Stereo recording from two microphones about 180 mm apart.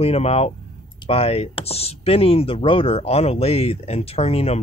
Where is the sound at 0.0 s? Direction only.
35° left (ahead or behind).